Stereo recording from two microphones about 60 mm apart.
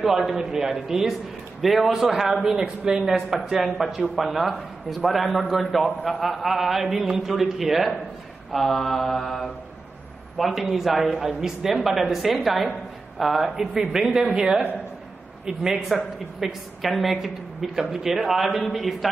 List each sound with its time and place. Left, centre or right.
0.0 s a man's voice: centre
2.6 s a man's voice: centre
10.3 s a woman's voice: centre
15.7 s a woman's voice: centre